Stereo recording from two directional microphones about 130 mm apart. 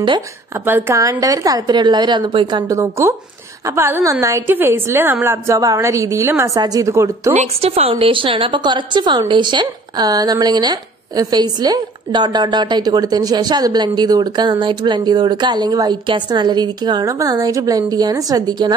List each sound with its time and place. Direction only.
0.7 s a woman's voice: 15° right (ahead or behind); by 2.6 s 35° right (ahead or behind)
2.7 s a woman's voice: 20° right (ahead or behind)
7.3 s speech: 50° right (ahead or behind); by 18.8 s 30° right (ahead or behind)